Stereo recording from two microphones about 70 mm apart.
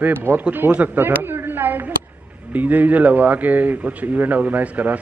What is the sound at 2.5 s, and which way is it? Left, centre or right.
A man's voice, right.